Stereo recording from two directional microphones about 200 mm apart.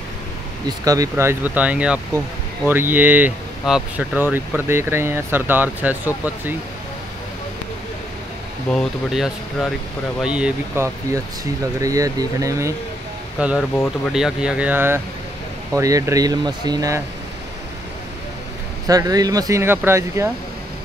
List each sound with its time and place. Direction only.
0.7 s speech: 15° right (ahead or behind)
8.6 s speech: centre (ahead or behind)
11.1 s speech: 15° right (ahead or behind)
13.4 s speech: centre (ahead or behind); by 17.0 s 20° right (ahead or behind)
18.9 s speech: 20° right (ahead or behind)